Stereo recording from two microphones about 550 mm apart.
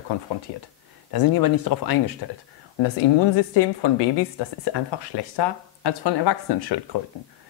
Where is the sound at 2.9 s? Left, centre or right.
Left.